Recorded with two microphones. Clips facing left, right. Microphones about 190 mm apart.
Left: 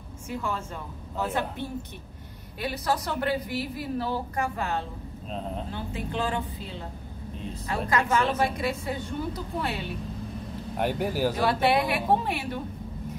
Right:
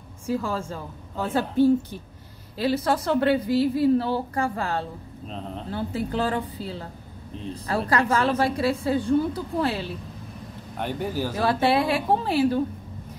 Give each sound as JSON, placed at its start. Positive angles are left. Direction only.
{"t": 0.3, "sound": "a woman's voice", "side_deg": -35}
{"t": 10.8, "sound": "speech", "side_deg": 10}
{"t": 11.6, "sound": "speech", "side_deg": -25}